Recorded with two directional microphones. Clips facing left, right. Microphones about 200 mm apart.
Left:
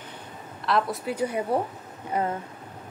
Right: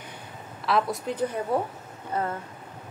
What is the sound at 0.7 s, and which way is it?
A woman's voice, centre (ahead or behind).